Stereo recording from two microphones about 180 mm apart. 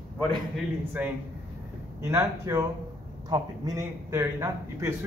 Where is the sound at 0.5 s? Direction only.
10° right (ahead or behind).